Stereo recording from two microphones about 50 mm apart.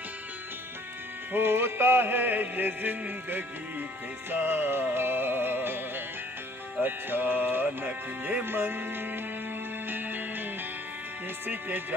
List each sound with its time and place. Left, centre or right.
1.3 s music: right
11.4 s speech: right